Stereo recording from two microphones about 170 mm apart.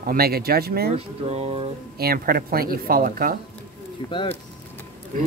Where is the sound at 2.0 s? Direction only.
60° right (ahead or behind).